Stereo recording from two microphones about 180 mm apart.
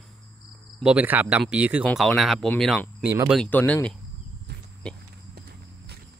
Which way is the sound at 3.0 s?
15° right (ahead or behind).